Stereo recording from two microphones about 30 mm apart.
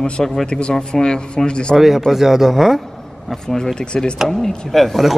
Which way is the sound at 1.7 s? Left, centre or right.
Centre.